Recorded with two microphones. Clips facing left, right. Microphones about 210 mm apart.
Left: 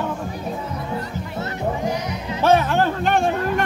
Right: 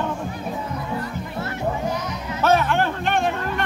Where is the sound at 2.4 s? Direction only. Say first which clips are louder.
Left 2 dB; 35° left (ahead or behind).